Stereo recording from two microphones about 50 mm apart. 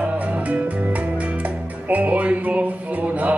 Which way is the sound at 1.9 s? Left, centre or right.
Right.